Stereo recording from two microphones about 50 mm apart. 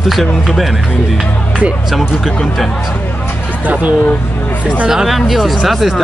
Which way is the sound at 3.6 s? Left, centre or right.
Right.